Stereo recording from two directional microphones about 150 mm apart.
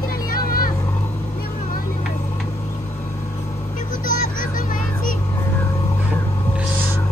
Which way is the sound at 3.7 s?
65° left (ahead or behind).